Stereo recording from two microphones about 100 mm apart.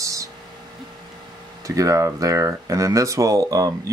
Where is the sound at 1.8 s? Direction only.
30° right (ahead or behind).